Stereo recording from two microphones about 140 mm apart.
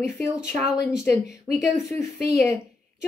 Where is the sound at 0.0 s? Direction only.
5° right (ahead or behind).